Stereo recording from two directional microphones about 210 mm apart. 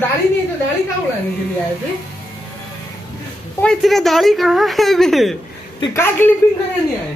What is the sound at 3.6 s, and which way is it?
Speech, centre (ahead or behind).